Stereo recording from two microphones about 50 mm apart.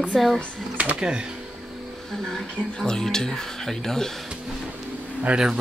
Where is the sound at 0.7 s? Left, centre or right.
Right.